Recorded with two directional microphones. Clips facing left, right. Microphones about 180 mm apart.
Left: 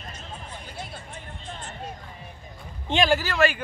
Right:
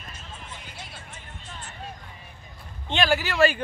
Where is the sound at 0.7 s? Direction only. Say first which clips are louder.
Left 5 dB; 55° left (ahead or behind).